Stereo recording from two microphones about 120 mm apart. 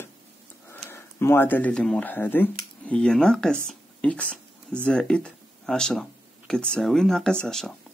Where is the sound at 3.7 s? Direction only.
10° left (ahead or behind).